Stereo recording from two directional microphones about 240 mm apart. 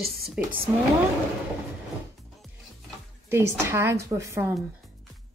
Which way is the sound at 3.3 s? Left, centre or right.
Centre.